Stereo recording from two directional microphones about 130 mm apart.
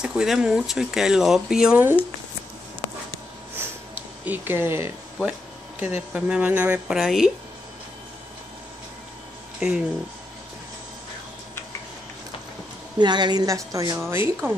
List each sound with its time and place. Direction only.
0.0 s speech: 5° right (ahead or behind)
3.5 s a sound: 10° right (ahead or behind)
5.8 s speech: 10° right (ahead or behind)
7.0 s speech: centre (ahead or behind)
9.6 s speech: 5° right (ahead or behind)
13.0 s a woman's voice: 35° right (ahead or behind); by 14.5 s 20° right (ahead or behind)